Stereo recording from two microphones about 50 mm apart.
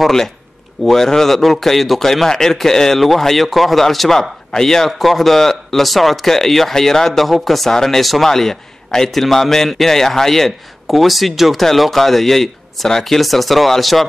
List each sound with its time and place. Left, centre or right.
0.0 s a man's voice: centre